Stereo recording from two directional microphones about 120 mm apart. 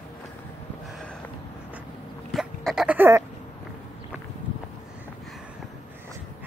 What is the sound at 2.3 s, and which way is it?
Goat, centre (ahead or behind).